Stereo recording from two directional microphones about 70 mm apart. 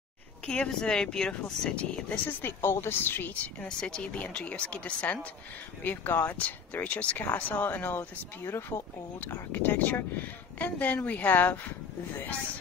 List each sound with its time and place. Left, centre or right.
0.5 s speech: centre
2.2 s a woman's voice: left
3.6 s speech: centre
5.9 s speech: left
8.5 s a woman's voice: left
9.2 s speech: left